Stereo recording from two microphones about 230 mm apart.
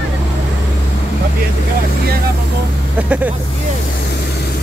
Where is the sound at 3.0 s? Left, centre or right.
Centre.